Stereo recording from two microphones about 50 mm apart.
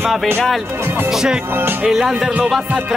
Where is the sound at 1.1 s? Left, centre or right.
Centre.